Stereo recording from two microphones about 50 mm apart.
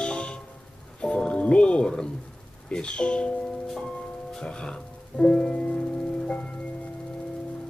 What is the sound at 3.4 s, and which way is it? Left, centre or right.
Music, centre.